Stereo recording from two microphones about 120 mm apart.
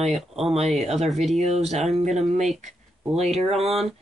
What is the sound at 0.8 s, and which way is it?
Speech, 65° right (ahead or behind).